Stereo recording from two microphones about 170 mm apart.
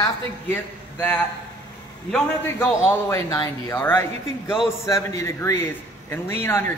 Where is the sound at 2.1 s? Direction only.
15° left (ahead or behind).